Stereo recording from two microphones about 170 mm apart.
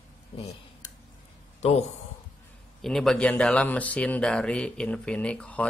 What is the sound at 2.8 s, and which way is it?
Speech, centre (ahead or behind).